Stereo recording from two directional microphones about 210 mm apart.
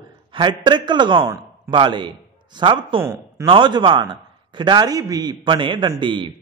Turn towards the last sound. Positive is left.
turn(degrees=-25)  # may be behind; listen again after turning